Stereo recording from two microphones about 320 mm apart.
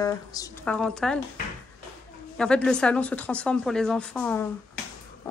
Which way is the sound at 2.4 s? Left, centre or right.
Centre.